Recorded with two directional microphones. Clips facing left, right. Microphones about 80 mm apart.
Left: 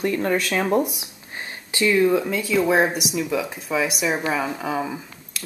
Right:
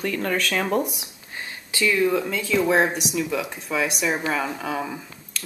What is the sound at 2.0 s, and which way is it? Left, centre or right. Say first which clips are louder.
Speech: left 4 dB; centre.